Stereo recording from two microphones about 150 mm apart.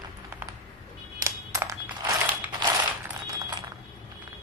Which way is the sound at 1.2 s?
20° right (ahead or behind).